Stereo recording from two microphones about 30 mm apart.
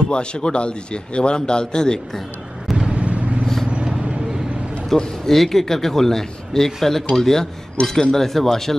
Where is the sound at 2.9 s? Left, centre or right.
Right.